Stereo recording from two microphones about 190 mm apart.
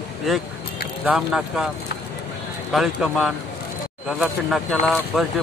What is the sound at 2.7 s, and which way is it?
Speech, centre (ahead or behind).